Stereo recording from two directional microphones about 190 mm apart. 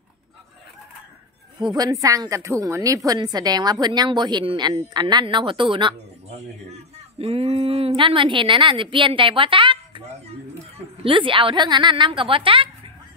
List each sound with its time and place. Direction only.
1.6 s a woman's voice: 20° right (ahead or behind)
11.1 s a woman's voice: 25° right (ahead or behind)